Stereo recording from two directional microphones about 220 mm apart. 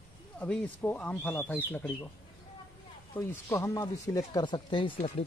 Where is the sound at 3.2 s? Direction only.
15° left (ahead or behind).